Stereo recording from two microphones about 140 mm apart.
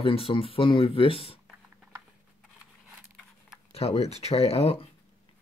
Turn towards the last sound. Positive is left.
turn(degrees=45)  # may be behind; listen again after turning